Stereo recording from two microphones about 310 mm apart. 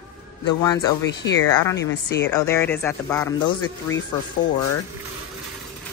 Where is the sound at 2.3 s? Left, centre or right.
Centre.